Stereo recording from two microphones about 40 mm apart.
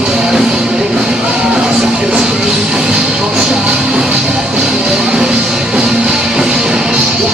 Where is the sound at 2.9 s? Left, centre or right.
Right.